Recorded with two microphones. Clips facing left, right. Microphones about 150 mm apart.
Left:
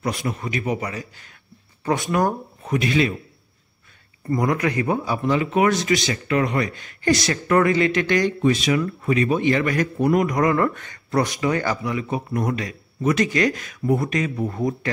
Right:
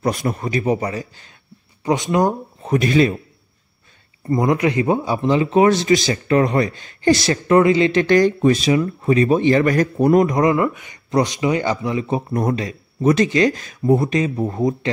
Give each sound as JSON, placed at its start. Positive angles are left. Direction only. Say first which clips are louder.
{"t": 0.0, "sound": "a man's voice", "louder": "right 5 dB", "side_deg": -40}
{"t": 1.9, "sound": "speech", "louder": "right 3 dB", "side_deg": -20}
{"t": 2.7, "sound": "a man's voice", "louder": "right 5 dB", "side_deg": -40}
{"t": 4.3, "sound": "speech", "louder": "right 4 dB", "side_deg": -25}